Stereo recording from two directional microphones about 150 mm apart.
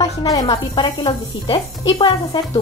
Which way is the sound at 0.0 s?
25° left (ahead or behind).